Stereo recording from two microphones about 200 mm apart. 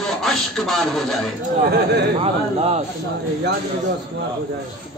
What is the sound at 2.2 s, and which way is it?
Speech, 30° right (ahead or behind).